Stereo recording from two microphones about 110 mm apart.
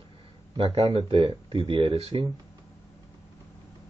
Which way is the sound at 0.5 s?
65° right (ahead or behind).